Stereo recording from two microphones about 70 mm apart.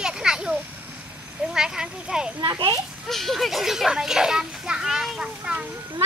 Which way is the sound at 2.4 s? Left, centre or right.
Right.